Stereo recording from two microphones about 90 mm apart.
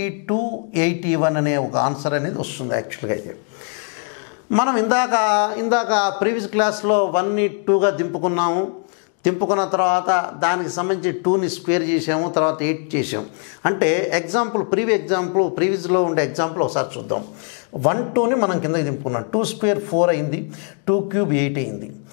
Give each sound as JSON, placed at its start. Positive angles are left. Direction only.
{"t": 0.0, "sound": "a man's voice", "side_deg": 20}
{"t": 4.5, "sound": "a man's voice", "side_deg": 15}